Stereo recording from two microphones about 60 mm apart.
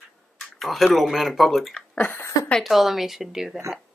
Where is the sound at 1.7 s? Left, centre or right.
Centre.